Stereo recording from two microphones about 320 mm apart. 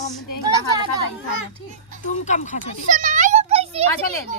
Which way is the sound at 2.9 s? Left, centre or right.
Right.